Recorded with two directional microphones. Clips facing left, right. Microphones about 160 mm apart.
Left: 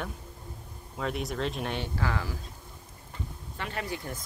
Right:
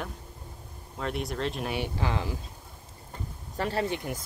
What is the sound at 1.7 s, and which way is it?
Speech, 15° right (ahead or behind).